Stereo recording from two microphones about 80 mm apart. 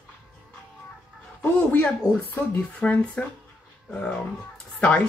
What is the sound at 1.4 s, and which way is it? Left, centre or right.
Speech, centre.